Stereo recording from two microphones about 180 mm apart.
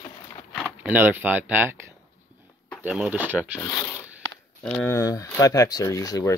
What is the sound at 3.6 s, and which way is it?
Zipper, 15° left (ahead or behind).